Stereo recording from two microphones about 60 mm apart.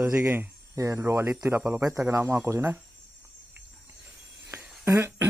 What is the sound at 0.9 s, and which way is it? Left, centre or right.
Speech, right.